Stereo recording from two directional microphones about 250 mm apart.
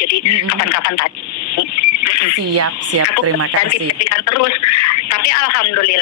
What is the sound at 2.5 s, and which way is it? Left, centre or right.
Speech, right.